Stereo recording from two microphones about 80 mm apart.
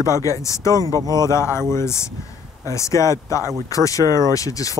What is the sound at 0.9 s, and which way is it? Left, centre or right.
Speech, right.